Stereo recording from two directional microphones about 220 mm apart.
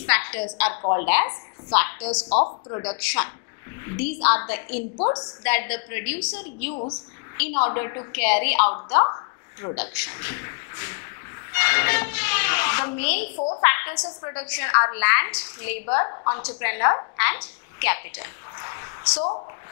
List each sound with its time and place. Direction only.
0.0 s a woman's voice: 10° left (ahead or behind)
2.2 s speech: 35° left (ahead or behind)
3.9 s a woman's voice: 15° left (ahead or behind)
4.9 s speech: 30° left (ahead or behind)
5.4 s a woman's voice: 10° left (ahead or behind)
6.7 s speech: 30° left (ahead or behind)
7.6 s a woman's voice: 15° left (ahead or behind)
8.9 s a sound: 20° left (ahead or behind)
9.8 s a woman's voice: 15° left (ahead or behind)